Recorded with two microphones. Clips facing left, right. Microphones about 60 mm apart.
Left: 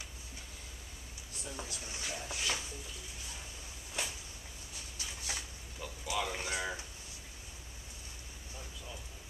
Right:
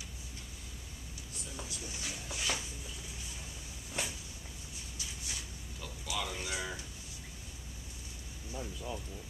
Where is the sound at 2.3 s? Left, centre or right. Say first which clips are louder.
Right 1 dB; centre.